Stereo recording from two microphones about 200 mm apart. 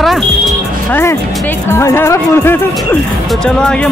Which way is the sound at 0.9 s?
10° left (ahead or behind).